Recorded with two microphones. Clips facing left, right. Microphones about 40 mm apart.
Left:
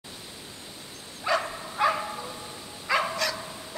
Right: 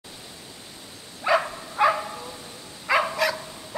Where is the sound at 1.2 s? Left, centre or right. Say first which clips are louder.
Right 4 dB; centre.